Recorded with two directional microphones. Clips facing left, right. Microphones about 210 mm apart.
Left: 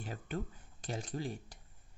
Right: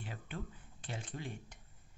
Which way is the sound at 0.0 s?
40° left (ahead or behind).